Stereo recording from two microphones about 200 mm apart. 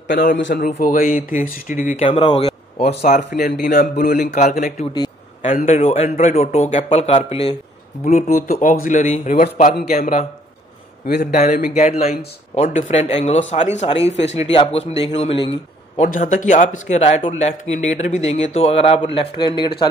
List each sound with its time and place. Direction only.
0.1 s a man's voice: 50° left (ahead or behind)
2.0 s speech: 25° left (ahead or behind)
3.2 s a man's voice: 55° left (ahead or behind)
3.4 s speech: 40° left (ahead or behind)
4.9 s a sound: 25° left (ahead or behind)
5.7 s a man's voice: 30° left (ahead or behind)
6.0 s speech: 45° left (ahead or behind)
6.5 s speech: 30° left (ahead or behind)
11.3 s speech: 35° left (ahead or behind)
16.0 s speech: 40° left (ahead or behind); by 19.7 s 20° left (ahead or behind)